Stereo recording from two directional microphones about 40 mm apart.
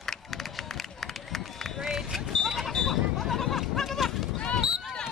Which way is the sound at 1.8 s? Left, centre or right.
Centre.